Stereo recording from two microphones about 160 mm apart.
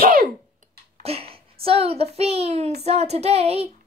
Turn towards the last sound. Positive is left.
turn(degrees=-40)  # may be behind; listen again after turning